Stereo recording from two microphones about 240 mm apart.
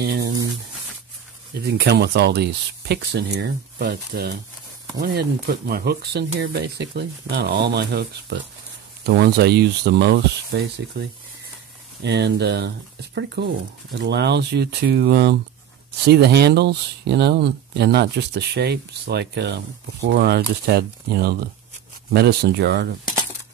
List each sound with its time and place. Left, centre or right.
0.0 s a sound: right
1.5 s speech: right
12.0 s speech: right